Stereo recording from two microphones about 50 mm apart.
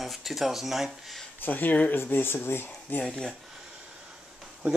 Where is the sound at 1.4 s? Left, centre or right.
Left.